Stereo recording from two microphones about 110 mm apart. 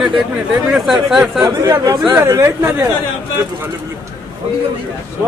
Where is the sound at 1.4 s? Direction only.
25° right (ahead or behind).